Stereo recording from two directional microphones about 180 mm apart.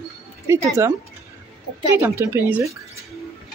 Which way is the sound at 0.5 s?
15° right (ahead or behind).